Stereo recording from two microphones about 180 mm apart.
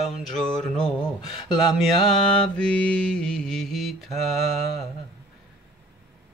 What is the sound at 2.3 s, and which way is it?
Mantra, 5° left (ahead or behind).